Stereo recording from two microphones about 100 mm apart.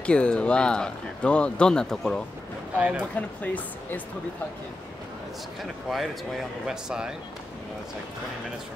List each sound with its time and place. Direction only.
0.0 s speech: 10° left (ahead or behind)
2.8 s speech: 10° right (ahead or behind)
3.2 s speech: 15° left (ahead or behind)
5.6 s speech: centre (ahead or behind)